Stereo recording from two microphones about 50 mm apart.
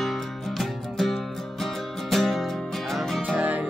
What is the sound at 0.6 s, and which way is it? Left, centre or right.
Music, centre.